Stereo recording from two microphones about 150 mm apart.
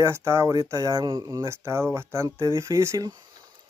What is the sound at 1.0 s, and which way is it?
Speech, 35° right (ahead or behind).